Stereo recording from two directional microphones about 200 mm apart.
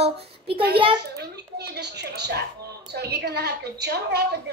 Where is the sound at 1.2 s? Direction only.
55° right (ahead or behind).